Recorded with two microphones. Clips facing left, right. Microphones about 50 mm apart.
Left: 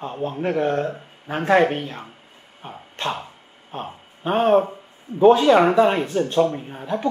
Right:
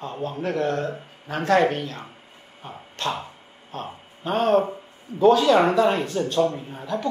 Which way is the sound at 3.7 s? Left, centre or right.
Left.